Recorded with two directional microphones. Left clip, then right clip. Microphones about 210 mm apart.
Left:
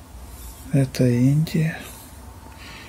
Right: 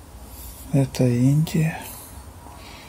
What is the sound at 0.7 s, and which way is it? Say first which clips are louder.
Speech: left 1 dB; 10° left (ahead or behind).